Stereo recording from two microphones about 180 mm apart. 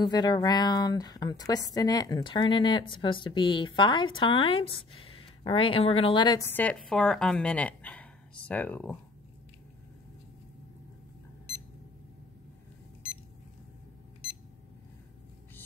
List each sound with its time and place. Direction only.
0.0 s a woman's voice: 25° left (ahead or behind)